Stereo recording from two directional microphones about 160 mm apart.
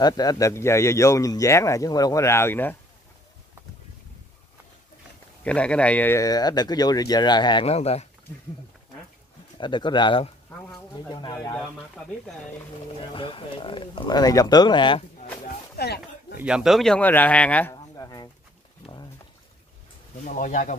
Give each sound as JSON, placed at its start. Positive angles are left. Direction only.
{"t": 0.0, "sound": "speech", "side_deg": 25}
{"t": 5.4, "sound": "speech", "side_deg": 5}
{"t": 9.6, "sound": "speech", "side_deg": 30}
{"t": 13.1, "sound": "speech", "side_deg": 30}
{"t": 15.4, "sound": "a sound", "side_deg": 90}
{"t": 16.3, "sound": "speech", "side_deg": -5}
{"t": 17.9, "sound": "pigeon", "side_deg": 25}
{"t": 20.2, "sound": "speech", "side_deg": 55}